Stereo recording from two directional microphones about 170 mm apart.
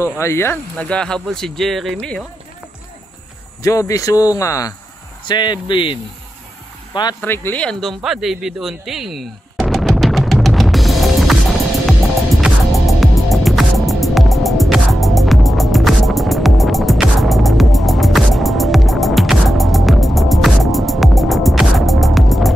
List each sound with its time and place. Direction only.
0.2 s speech: 15° left (ahead or behind)
3.6 s speech: 20° left (ahead or behind)
7.2 s a sound: 15° left (ahead or behind)
12.4 s music: 5° right (ahead or behind)